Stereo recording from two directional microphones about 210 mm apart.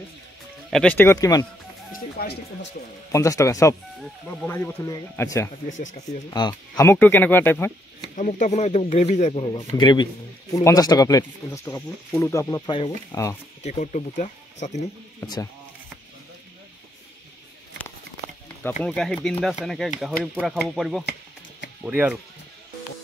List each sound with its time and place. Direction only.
0.7 s speech: 5° left (ahead or behind)
1.9 s a sound: 50° left (ahead or behind)
3.1 s speech: 15° left (ahead or behind)
5.7 s speech: 35° left (ahead or behind)
6.8 s speech: 10° left (ahead or behind)
8.2 s speech: 35° left (ahead or behind)
9.8 s speech: 20° left (ahead or behind)
13.6 s speech: 35° left (ahead or behind)
15.1 s speech: 20° left (ahead or behind)
18.6 s speech: 5° left (ahead or behind)